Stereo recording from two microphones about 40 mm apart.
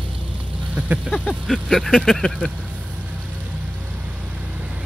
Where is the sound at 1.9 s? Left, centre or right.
Centre.